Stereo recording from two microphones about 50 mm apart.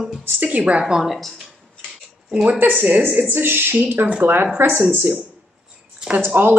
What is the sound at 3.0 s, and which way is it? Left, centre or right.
Speech, right.